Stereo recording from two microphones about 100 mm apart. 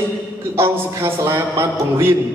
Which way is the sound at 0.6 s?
25° right (ahead or behind).